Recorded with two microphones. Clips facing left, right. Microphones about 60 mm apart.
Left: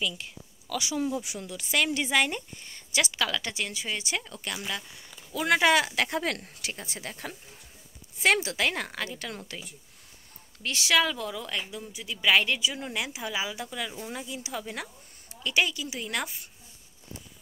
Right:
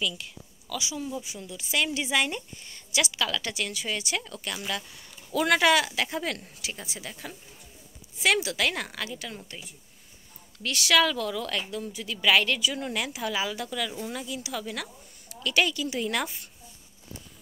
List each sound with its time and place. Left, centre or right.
0.0 s a woman's voice: left
0.7 s a woman's voice: left
1.2 s a woman's voice: left
5.3 s speech: centre
5.6 s speech: left
5.9 s a woman's voice: left
10.6 s speech: left
15.4 s speech: centre